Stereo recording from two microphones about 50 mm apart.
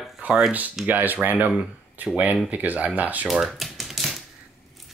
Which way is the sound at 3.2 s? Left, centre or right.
Centre.